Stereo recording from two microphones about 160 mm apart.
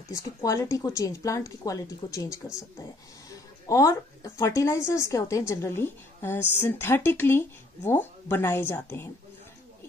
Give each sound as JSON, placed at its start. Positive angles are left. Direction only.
{"t": 0.1, "sound": "speech", "side_deg": 20}